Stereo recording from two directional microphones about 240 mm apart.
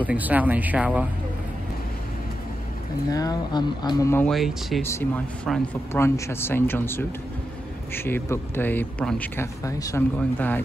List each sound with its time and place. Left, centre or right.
0.0 s speech: centre
3.1 s a man's voice: centre